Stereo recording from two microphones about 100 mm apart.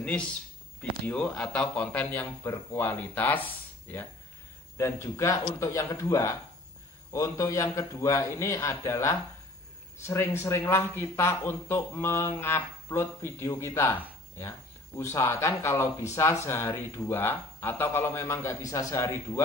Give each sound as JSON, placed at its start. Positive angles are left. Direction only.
{"t": 0.0, "sound": "a man's voice", "side_deg": 10}
{"t": 15.0, "sound": "speech", "side_deg": 30}